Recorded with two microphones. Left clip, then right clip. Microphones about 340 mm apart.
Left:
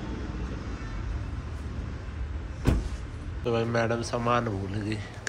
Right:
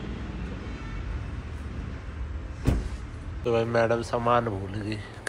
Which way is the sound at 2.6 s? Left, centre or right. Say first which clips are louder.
Left 1 dB; centre.